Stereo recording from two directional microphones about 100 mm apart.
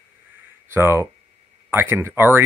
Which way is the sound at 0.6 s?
25° right (ahead or behind).